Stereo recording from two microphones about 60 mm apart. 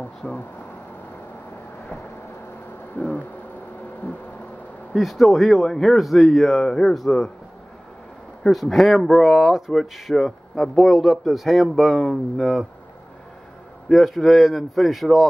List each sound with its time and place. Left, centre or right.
0.2 s speech: left
3.0 s a sound: left
4.9 s speech: centre
6.6 s speech: centre
8.5 s speech: centre
13.8 s speech: centre